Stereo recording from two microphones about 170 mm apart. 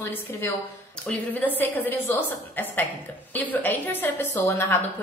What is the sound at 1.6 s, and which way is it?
A woman's voice, 10° left (ahead or behind).